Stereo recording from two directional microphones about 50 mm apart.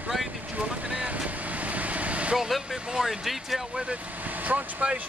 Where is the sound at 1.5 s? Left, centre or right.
Right.